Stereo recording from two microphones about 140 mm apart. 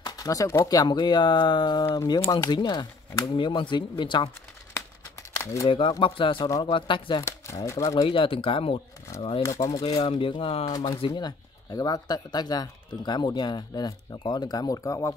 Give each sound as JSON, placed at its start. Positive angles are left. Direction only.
{"t": 0.0, "sound": "speech", "side_deg": 25}
{"t": 5.4, "sound": "speech", "side_deg": 25}
{"t": 5.7, "sound": "speech", "side_deg": 40}
{"t": 7.2, "sound": "speech", "side_deg": 20}
{"t": 8.1, "sound": "speech", "side_deg": 40}
{"t": 9.4, "sound": "speech", "side_deg": 20}
{"t": 9.9, "sound": "speech", "side_deg": 40}
{"t": 10.7, "sound": "speech", "side_deg": 30}